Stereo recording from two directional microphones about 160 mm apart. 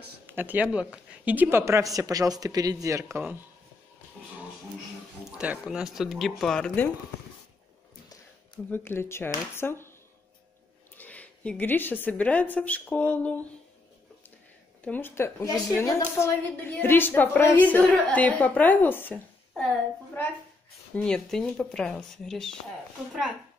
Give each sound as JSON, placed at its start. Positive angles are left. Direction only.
{"t": 0.3, "sound": "speech", "side_deg": -10}
{"t": 5.3, "sound": "speech", "side_deg": -5}
{"t": 8.6, "sound": "a woman's voice", "side_deg": 15}
{"t": 11.0, "sound": "speech", "side_deg": 10}
{"t": 14.8, "sound": "a woman's voice", "side_deg": 10}
{"t": 20.9, "sound": "speech", "side_deg": 5}